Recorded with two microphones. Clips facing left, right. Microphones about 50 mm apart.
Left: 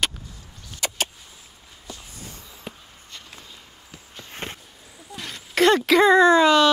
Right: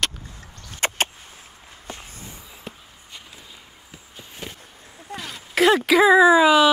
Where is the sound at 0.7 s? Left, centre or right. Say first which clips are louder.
Right 4 dB; right.